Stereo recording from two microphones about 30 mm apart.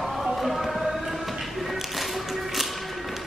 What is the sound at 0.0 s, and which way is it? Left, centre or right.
Music, centre.